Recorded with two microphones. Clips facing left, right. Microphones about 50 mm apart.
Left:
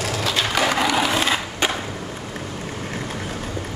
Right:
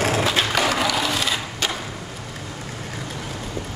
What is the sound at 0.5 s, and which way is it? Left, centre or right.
Skateboard, centre.